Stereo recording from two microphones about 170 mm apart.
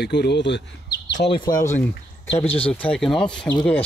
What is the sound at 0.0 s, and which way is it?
Speech, 80° left.